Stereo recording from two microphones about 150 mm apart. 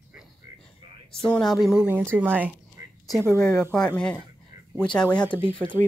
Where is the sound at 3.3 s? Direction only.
10° left (ahead or behind).